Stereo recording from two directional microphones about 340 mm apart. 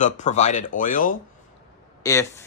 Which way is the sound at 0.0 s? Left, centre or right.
Left.